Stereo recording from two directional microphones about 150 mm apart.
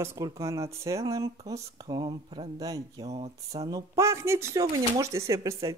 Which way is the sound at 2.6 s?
25° right (ahead or behind).